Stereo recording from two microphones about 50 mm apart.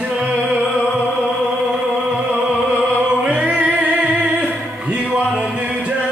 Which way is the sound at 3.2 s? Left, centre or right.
Right.